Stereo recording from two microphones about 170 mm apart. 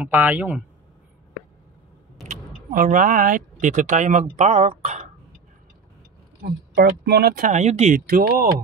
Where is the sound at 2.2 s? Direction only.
55° right (ahead or behind).